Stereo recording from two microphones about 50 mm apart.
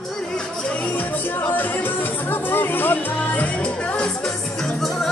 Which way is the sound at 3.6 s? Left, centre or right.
Left.